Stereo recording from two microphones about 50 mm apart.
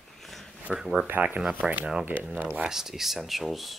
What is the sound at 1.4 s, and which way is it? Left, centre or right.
Speech, right.